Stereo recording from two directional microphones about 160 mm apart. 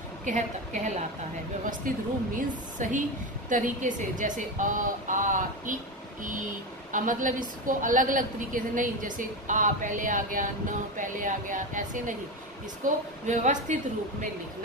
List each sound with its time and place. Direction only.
0.2 s a woman's voice: 50° right (ahead or behind)
6.9 s a woman's voice: 55° right (ahead or behind)
13.3 s speech: 50° right (ahead or behind)